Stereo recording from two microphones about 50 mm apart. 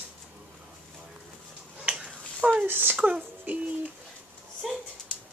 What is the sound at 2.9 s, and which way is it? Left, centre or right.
Speech, right.